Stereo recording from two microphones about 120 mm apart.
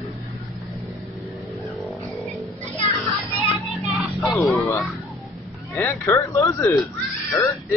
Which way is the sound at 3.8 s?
Centre (ahead or behind).